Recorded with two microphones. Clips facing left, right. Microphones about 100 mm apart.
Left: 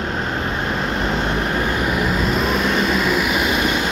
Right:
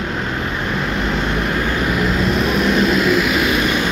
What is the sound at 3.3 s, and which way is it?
Vehicle, 20° left (ahead or behind).